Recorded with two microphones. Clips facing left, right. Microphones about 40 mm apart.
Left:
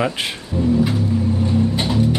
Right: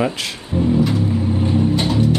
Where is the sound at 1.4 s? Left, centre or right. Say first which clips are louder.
Right 2 dB; right.